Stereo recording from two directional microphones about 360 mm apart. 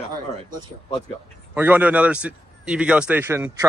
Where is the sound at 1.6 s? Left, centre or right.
Centre.